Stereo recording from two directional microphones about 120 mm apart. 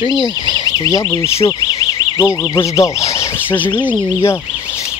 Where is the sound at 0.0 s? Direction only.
40° right (ahead or behind).